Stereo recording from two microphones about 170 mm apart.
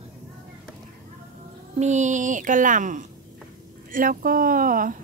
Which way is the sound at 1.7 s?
45° right (ahead or behind).